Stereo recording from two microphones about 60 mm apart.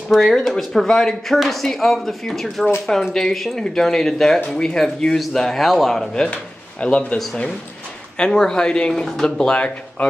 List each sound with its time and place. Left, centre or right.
0.1 s a man's voice: centre
6.1 s speech: centre
8.2 s a man's voice: centre